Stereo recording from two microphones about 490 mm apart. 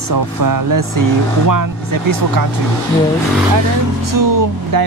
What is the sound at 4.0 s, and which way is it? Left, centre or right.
Speech, right.